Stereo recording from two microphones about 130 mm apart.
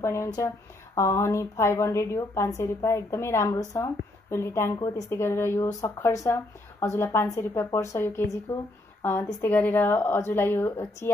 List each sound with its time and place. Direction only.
0.0 s a woman's voice: 20° left (ahead or behind)